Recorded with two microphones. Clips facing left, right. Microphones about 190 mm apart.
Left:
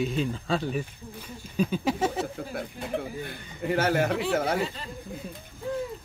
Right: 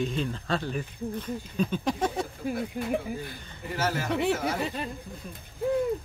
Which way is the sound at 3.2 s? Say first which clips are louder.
Left 8 dB; 60° left (ahead or behind).